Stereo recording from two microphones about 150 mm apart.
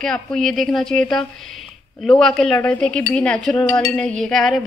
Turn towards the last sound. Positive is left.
turn(degrees=0)  # may be behind; listen again after turning